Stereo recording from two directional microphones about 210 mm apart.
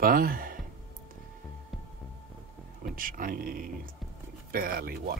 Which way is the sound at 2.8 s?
40° right (ahead or behind).